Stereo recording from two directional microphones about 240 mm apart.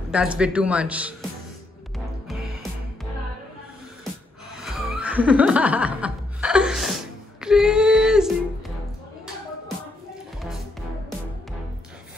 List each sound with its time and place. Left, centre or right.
0.1 s speech: centre
4.6 s music: centre
7.3 s child singing: centre